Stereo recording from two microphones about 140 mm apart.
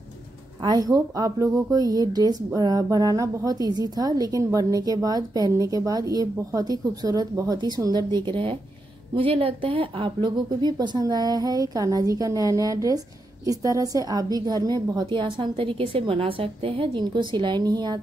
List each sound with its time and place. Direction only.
0.7 s a woman's voice: 25° right (ahead or behind)